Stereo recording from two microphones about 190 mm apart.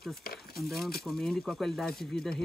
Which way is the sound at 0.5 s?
Centre (ahead or behind).